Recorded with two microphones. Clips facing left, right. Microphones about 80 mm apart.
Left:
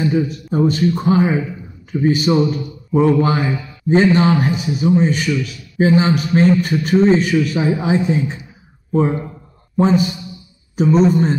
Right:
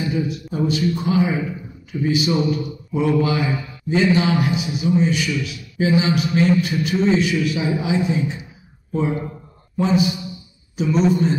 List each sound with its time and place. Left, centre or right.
0.0 s a man's voice: left